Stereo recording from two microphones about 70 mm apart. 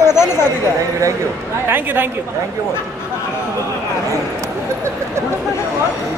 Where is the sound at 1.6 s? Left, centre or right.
Right.